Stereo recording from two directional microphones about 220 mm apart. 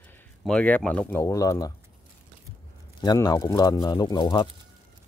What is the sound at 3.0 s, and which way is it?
Speech, 20° left (ahead or behind).